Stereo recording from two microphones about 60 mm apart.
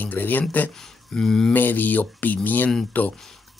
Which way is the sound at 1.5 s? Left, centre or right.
Left.